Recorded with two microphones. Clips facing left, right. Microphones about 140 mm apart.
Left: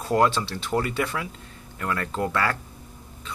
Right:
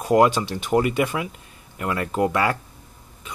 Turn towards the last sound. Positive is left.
turn(degrees=-15)  # may be behind; listen again after turning